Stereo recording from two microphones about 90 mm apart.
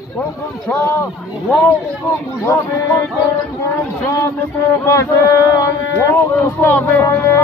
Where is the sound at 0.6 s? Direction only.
20° left (ahead or behind).